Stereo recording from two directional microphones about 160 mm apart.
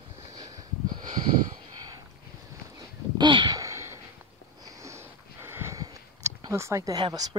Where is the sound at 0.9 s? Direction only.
35° right (ahead or behind).